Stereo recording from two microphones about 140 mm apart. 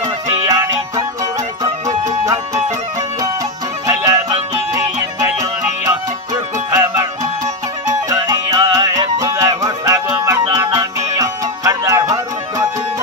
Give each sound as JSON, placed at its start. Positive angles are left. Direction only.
{"t": 0.5, "sound": "music", "side_deg": -25}
{"t": 3.8, "sound": "music", "side_deg": -25}
{"t": 6.3, "sound": "music", "side_deg": -25}
{"t": 8.1, "sound": "music", "side_deg": -25}